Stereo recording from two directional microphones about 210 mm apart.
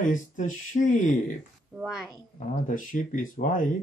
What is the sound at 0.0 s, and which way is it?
Speech, 40° left (ahead or behind).